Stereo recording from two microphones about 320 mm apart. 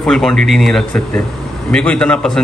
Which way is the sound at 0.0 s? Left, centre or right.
Centre.